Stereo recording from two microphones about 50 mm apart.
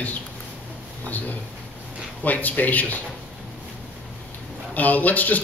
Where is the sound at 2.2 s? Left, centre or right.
Left.